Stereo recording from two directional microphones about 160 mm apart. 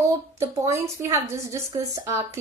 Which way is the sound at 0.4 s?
20° right (ahead or behind).